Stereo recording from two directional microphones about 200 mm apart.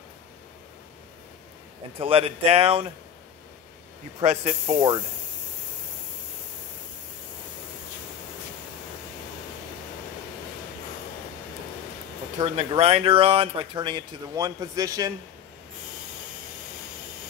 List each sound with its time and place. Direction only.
2.0 s speech: 30° right (ahead or behind)
4.2 s speech: 35° right (ahead or behind)
12.4 s speech: 30° right (ahead or behind)